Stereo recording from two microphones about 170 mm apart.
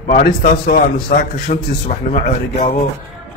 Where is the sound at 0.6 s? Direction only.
55° left (ahead or behind).